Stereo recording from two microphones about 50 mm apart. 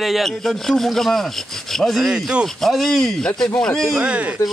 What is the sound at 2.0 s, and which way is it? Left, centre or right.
Speech, centre.